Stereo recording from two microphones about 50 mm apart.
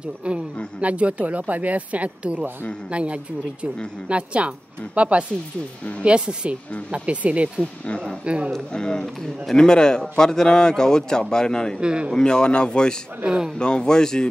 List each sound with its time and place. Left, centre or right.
0.7 s speech: right
8.5 s a man's voice: centre
11.8 s speech: centre
12.2 s a man's voice: centre
13.2 s speech: centre
13.6 s a man's voice: centre